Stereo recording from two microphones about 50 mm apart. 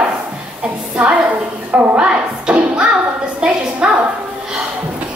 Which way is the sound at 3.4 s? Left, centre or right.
Right.